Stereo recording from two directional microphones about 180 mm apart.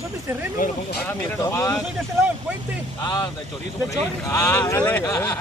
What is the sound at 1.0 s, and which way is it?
Speech, 15° left (ahead or behind).